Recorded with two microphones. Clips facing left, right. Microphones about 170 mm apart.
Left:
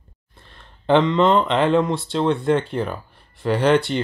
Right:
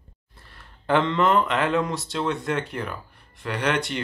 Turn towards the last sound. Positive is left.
turn(degrees=30)  # may be behind; listen again after turning